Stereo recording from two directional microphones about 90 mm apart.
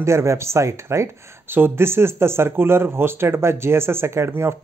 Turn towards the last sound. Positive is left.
turn(degrees=-30)  # may be behind; listen again after turning